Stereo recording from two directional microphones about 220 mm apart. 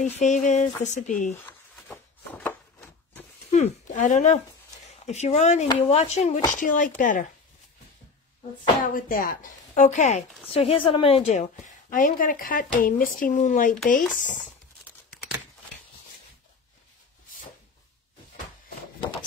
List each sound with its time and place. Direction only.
0.0 s speech: 35° left (ahead or behind)
1.3 s a sound: 10° left (ahead or behind)
3.5 s a woman's voice: 30° left (ahead or behind)
8.8 s a woman's voice: 40° left (ahead or behind)
11.6 s speech: 40° left (ahead or behind)